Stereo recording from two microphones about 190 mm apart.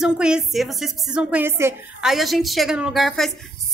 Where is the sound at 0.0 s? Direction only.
5° right (ahead or behind).